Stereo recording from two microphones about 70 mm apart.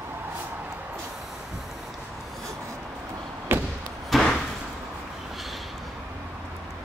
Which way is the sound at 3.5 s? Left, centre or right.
Right.